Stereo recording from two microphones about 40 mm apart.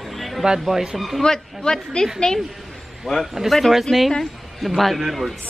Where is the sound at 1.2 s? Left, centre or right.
Centre.